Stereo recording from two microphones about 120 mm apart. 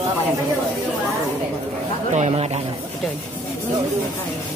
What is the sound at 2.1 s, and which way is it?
Speech, 65° right (ahead or behind).